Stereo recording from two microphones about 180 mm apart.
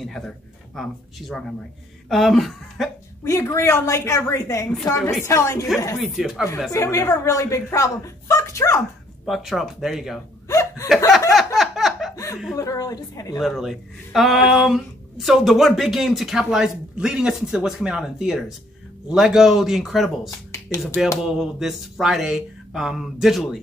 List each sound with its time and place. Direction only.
0.0 s speech: centre (ahead or behind)
3.3 s a woman's voice: 15° left (ahead or behind)
5.9 s speech: centre (ahead or behind)
6.7 s a woman's voice: 15° left (ahead or behind)
9.2 s speech: centre (ahead or behind)
10.5 s hiccup: 15° left (ahead or behind)
11.1 s a sound: centre (ahead or behind)
12.5 s a woman's voice: 20° left (ahead or behind)
13.4 s speech: centre (ahead or behind)